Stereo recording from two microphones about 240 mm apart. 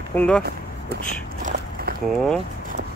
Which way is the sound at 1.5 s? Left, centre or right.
Right.